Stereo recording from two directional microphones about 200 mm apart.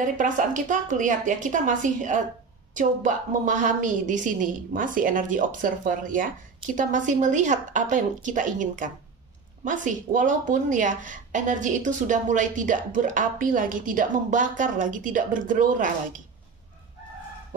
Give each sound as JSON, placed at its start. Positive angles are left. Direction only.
{"t": 0.0, "sound": "a woman's voice", "side_deg": -40}